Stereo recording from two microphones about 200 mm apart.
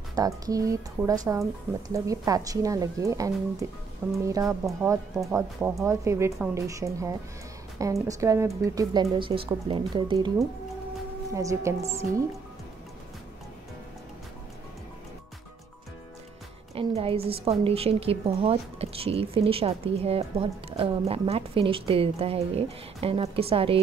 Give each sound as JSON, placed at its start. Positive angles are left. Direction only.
{"t": 0.2, "sound": "speech", "side_deg": -20}
{"t": 11.3, "sound": "speech", "side_deg": -15}
{"t": 16.7, "sound": "speech", "side_deg": -30}